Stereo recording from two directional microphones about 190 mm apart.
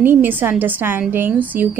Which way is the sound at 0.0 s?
10° right (ahead or behind).